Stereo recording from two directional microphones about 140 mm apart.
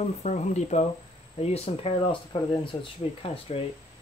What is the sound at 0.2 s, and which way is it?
Speech, 55° left (ahead or behind).